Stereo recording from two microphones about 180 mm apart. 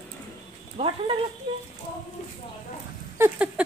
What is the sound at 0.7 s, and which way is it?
Speech, 30° right (ahead or behind).